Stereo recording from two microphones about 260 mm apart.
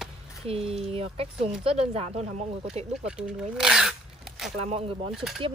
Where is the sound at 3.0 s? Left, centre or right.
Centre.